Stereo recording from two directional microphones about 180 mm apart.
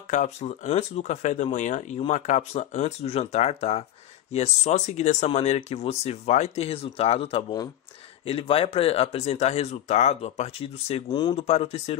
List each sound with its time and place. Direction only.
0.1 s speech: 40° left (ahead or behind)
11.1 s speech: 25° left (ahead or behind)
11.3 s speech: 35° left (ahead or behind)